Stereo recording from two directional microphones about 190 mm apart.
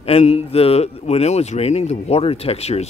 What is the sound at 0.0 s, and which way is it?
Speech, 30° left (ahead or behind).